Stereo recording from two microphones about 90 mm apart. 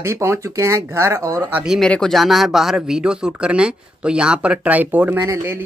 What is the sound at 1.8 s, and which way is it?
Speech, 10° left (ahead or behind).